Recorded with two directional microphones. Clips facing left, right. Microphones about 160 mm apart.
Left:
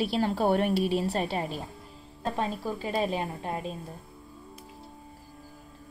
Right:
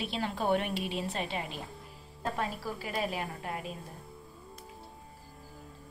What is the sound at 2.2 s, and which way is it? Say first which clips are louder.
A woman's voice: left 4 dB; 25° left (ahead or behind).